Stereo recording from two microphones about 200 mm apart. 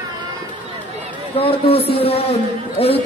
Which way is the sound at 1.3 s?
30° left (ahead or behind).